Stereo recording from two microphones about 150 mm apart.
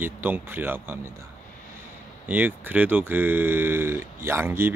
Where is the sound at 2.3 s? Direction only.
10° right (ahead or behind).